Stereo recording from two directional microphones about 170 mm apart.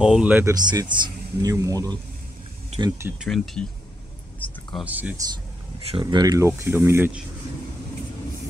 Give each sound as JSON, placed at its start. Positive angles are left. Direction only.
{"t": 0.0, "sound": "speech", "side_deg": -5}
{"t": 0.6, "sound": "speech", "side_deg": -25}
{"t": 3.2, "sound": "speech", "side_deg": 0}
{"t": 4.4, "sound": "a sound", "side_deg": 10}
{"t": 4.7, "sound": "speech", "side_deg": -10}
{"t": 5.9, "sound": "speech", "side_deg": -30}